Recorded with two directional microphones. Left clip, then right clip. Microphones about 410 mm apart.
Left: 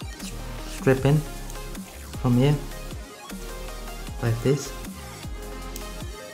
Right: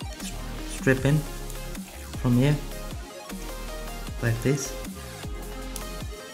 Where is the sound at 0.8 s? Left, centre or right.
Centre.